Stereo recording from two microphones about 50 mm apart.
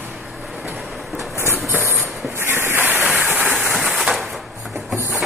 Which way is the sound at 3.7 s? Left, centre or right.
Centre.